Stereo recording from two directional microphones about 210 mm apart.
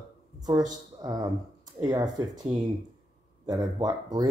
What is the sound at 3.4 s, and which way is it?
Speech, 20° right (ahead or behind).